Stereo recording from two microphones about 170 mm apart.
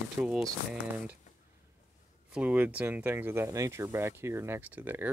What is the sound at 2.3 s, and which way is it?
Speech, 10° right (ahead or behind).